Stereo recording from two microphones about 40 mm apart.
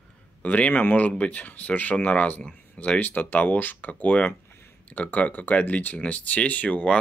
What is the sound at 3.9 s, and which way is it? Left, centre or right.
Speech, left.